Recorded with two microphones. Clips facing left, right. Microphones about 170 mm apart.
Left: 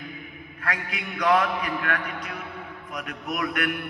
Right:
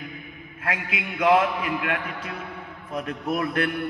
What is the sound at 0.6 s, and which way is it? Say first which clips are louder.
A man's voice: right 2 dB; 25° right (ahead or behind).